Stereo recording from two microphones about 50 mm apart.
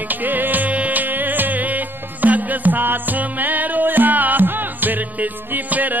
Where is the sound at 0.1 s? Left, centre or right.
Right.